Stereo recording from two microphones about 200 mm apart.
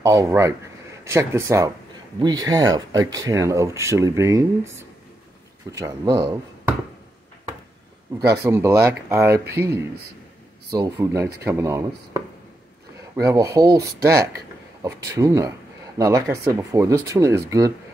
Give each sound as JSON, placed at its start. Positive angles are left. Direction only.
{"t": 0.0, "sound": "speech", "side_deg": -15}
{"t": 8.3, "sound": "speech", "side_deg": -10}
{"t": 10.7, "sound": "speech", "side_deg": -20}